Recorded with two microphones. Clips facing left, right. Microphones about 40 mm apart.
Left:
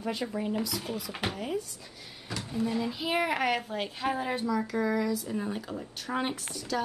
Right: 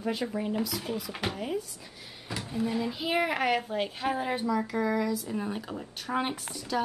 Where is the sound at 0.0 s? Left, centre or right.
Centre.